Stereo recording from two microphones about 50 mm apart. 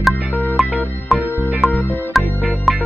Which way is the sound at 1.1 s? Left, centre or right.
Right.